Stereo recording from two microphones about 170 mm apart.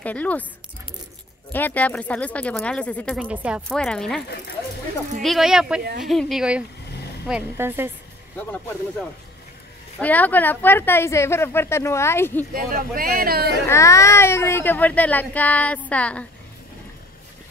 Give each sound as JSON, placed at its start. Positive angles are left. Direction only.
{"t": 0.0, "sound": "speech", "side_deg": 10}
{"t": 1.5, "sound": "speech", "side_deg": 10}
{"t": 3.2, "sound": "a woman's voice", "side_deg": -5}
{"t": 3.7, "sound": "speech", "side_deg": 5}
{"t": 5.2, "sound": "a woman's voice", "side_deg": 0}
{"t": 9.9, "sound": "speech", "side_deg": 10}
{"t": 12.5, "sound": "speech", "side_deg": -55}
{"t": 13.7, "sound": "speech", "side_deg": 15}